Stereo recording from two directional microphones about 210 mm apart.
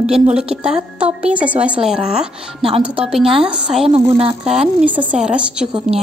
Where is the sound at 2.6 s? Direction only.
25° right (ahead or behind).